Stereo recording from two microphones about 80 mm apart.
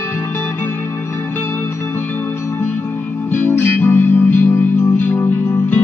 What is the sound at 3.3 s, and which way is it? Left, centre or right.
Music, left.